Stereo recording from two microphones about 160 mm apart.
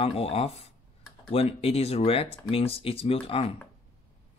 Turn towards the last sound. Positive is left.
turn(degrees=35)  # may be behind; listen again after turning